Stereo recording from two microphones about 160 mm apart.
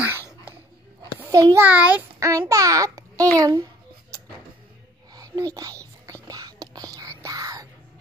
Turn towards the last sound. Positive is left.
turn(degrees=-20)  # may be behind; listen again after turning